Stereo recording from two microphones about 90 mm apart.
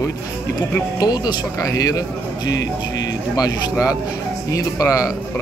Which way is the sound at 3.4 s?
40° left (ahead or behind).